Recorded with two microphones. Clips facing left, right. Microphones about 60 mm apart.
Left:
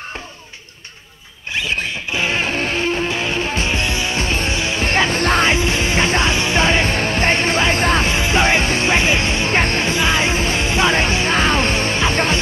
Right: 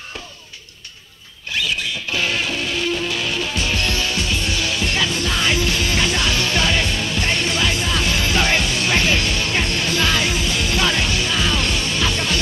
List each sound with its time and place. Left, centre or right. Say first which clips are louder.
1.5 s a sound: left 1 dB; left
2.1 s music: left 3 dB; left
4.2 s music: left 2 dB; left
5.5 s music: left 3 dB; left
9.9 s music: even; left